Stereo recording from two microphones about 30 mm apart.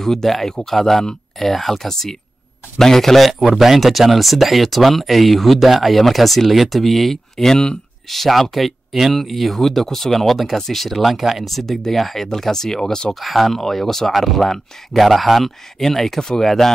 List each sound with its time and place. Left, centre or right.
0.0 s speech: centre
1.9 s speech: centre
7.5 s speech: left
8.1 s speech: centre
9.7 s speech: centre
11.1 s speech: centre
11.4 s speech: centre
13.1 s speech: centre